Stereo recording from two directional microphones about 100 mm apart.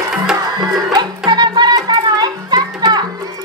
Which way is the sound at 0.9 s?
45° right (ahead or behind).